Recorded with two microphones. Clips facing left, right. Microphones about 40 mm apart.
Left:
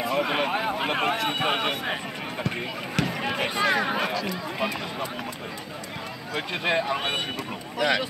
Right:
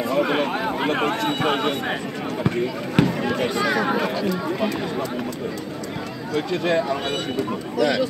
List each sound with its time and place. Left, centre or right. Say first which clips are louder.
0.0 s a man's voice: right 4 dB; centre
3.1 s speech: right 5 dB; centre
6.3 s speech: right 4 dB; left